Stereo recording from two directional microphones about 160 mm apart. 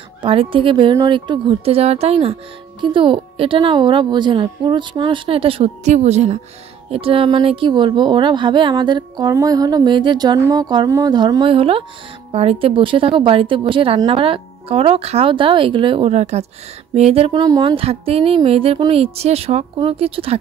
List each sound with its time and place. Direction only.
0.2 s speech: 35° right (ahead or behind)
17.4 s speech: 25° right (ahead or behind)